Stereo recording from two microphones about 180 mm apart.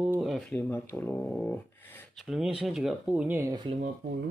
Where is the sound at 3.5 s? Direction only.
25° right (ahead or behind).